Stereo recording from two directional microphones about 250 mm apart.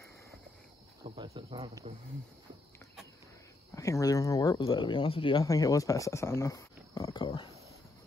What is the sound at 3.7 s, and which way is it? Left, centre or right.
Speech, centre.